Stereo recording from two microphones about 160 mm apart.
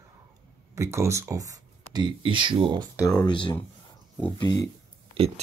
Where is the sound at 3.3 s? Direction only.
30° left (ahead or behind).